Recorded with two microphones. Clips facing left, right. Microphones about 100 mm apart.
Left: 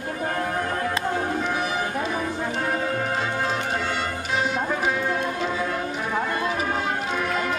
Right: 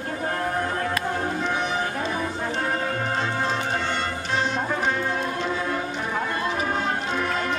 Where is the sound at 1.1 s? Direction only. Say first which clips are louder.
Left 1 dB; 5° left (ahead or behind).